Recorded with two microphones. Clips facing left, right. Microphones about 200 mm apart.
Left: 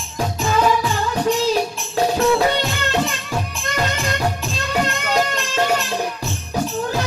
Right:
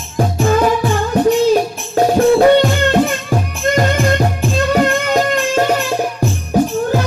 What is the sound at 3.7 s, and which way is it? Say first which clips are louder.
Music: right 7 dB; 50° right (ahead or behind).